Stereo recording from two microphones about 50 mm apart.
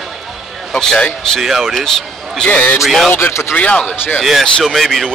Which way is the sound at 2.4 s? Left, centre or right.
Left.